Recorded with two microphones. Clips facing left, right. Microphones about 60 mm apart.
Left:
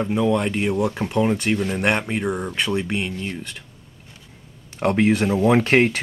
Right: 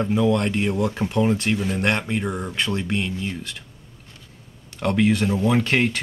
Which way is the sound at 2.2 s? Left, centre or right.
Centre.